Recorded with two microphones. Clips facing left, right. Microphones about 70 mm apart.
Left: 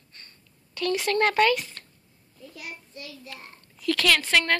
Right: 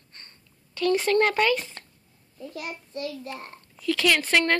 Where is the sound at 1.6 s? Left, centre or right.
Right.